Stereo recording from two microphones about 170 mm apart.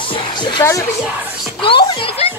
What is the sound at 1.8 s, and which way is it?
Speech, 30° left (ahead or behind).